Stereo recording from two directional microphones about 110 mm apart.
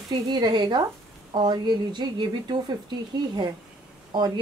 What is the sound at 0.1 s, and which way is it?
Speech, 40° right (ahead or behind).